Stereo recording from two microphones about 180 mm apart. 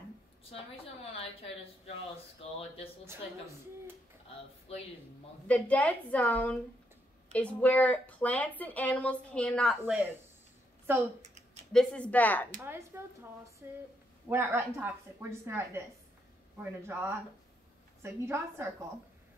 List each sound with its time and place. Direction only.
1.1 s a woman's voice: 35° left (ahead or behind)
3.1 s a woman's voice: 15° right (ahead or behind)
4.7 s a woman's voice: 35° left (ahead or behind)
5.5 s a woman's voice: 10° left (ahead or behind)
9.8 s a woman's voice: 10° right (ahead or behind)
11.7 s a woman's voice: 5° left (ahead or behind)
12.6 s a woman's voice: 15° right (ahead or behind)
16.8 s a woman's voice: 15° right (ahead or behind)